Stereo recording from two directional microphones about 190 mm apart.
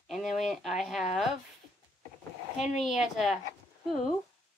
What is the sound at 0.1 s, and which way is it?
Speech, centre (ahead or behind).